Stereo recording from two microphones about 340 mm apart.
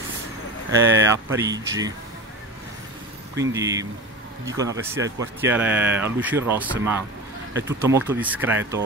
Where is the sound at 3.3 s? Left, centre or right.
Centre.